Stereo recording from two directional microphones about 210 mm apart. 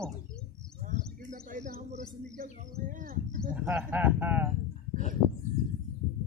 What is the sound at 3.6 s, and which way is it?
Speech, 10° right (ahead or behind).